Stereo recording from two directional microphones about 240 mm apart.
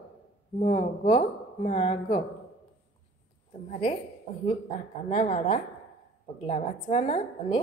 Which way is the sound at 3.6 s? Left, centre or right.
Left.